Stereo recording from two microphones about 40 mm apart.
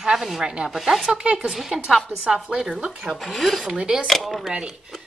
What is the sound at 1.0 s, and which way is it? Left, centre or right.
Speech, right.